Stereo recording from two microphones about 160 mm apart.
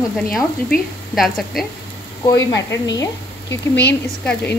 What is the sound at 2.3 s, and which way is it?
A woman's voice, 20° left (ahead or behind).